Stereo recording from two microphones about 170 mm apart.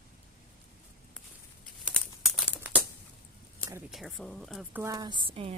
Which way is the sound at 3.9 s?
Centre (ahead or behind).